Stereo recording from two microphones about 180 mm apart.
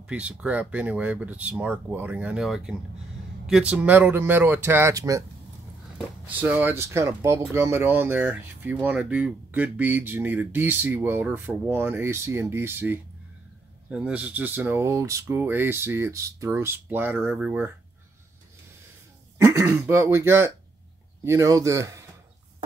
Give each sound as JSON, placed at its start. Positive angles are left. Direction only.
{"t": 0.0, "sound": "speech", "side_deg": -5}
{"t": 6.3, "sound": "speech", "side_deg": -10}
{"t": 19.3, "sound": "speech", "side_deg": -15}